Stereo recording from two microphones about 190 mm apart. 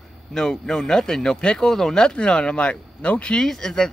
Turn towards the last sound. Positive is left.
turn(degrees=5)  # may be behind; listen again after turning